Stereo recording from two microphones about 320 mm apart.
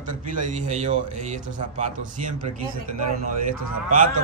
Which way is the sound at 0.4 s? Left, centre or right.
Right.